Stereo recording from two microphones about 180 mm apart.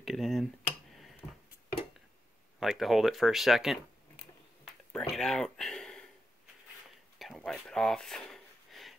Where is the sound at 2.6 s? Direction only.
Centre (ahead or behind).